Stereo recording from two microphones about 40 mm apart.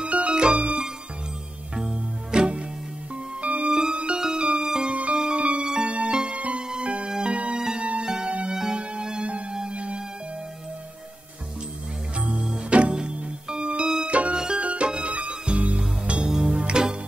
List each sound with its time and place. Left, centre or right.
0.0 s music: right
1.8 s music: centre
12.4 s music: right
14.6 s music: right
16.3 s music: centre
16.5 s music: right